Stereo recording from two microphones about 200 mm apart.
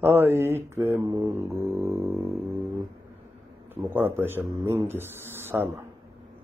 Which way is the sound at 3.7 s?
10° right (ahead or behind).